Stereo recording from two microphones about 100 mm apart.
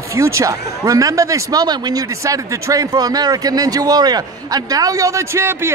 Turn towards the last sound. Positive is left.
turn(degrees=-25)  # may be behind; listen again after turning